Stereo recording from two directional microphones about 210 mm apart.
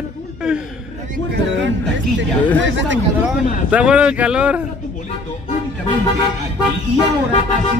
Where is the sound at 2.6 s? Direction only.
60° right (ahead or behind).